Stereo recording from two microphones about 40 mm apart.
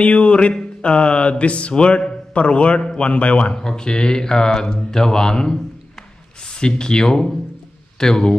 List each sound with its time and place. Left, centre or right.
0.0 s a man's voice: left
3.5 s speech: centre